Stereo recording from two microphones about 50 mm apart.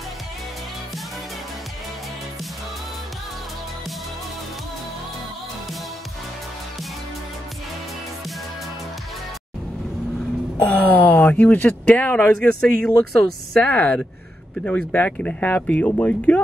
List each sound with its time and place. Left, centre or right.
10.6 s speech: left; by 13.3 s centre
13.6 s speech: left